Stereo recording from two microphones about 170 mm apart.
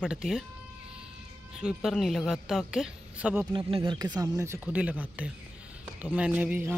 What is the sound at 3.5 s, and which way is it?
Speech, 30° right (ahead or behind).